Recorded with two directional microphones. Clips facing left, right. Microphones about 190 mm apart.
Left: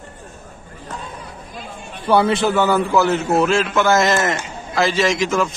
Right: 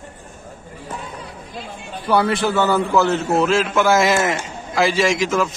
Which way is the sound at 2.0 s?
25° left (ahead or behind).